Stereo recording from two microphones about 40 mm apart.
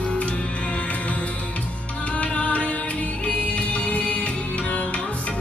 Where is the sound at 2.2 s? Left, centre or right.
Left.